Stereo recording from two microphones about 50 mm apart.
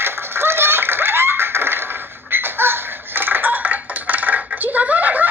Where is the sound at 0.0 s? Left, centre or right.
Right.